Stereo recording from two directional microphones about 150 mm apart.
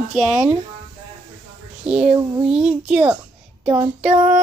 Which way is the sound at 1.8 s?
5° right (ahead or behind).